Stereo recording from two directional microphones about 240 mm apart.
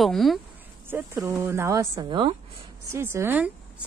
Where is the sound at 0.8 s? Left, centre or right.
Centre.